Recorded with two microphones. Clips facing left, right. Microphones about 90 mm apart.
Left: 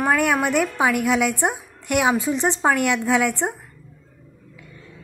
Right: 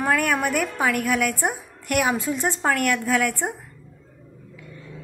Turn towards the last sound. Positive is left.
turn(degrees=15)  # may be behind; listen again after turning